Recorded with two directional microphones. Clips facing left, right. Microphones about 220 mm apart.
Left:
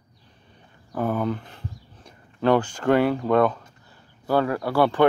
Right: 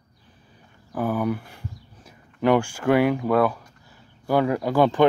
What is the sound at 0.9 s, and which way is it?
Speech, 5° right (ahead or behind).